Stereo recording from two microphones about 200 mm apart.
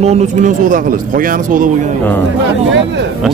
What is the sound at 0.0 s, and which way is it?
Speech, 35° right (ahead or behind).